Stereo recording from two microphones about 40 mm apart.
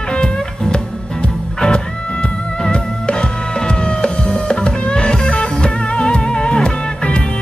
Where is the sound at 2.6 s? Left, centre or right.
Left.